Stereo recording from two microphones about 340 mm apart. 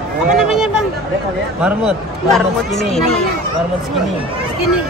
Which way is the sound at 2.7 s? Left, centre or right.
Centre.